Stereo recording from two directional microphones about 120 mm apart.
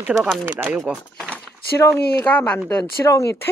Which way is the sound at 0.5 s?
20° right (ahead or behind).